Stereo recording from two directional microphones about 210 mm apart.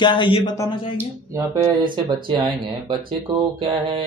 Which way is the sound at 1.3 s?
20° right (ahead or behind).